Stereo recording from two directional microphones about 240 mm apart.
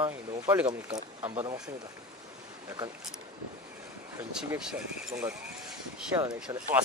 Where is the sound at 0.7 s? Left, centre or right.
Centre.